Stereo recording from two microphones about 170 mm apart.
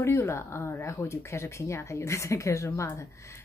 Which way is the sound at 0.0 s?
15° left (ahead or behind).